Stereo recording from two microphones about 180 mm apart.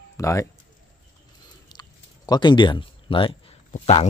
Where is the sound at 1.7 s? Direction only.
20° left (ahead or behind).